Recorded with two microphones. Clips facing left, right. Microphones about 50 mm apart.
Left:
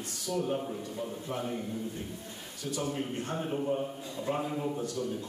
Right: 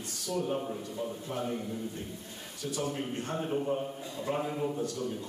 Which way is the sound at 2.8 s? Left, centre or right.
Centre.